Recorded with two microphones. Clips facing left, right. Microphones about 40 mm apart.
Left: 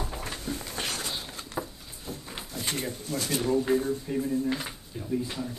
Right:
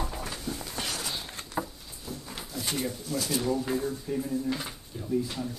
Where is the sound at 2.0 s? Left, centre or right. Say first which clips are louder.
Left 1 dB; left.